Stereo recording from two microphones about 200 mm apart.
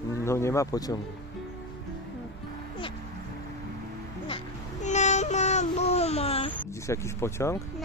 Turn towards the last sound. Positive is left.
turn(degrees=15)  # may be behind; listen again after turning